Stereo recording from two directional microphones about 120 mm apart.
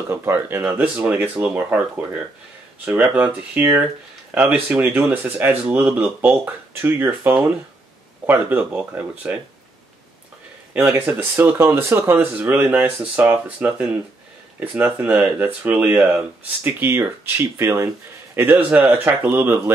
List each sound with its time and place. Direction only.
0.1 s speech: 20° right (ahead or behind)
10.7 s speech: 15° right (ahead or behind)